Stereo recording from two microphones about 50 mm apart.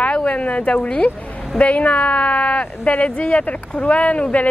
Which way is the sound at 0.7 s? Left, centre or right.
Left.